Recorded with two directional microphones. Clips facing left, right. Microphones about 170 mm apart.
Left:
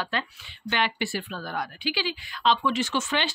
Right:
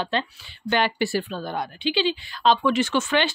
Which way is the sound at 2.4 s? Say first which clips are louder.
Right 4 dB; 40° right (ahead or behind).